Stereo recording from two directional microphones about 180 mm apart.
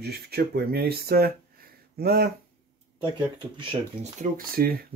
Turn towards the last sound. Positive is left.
turn(degrees=-55)  # may be behind; listen again after turning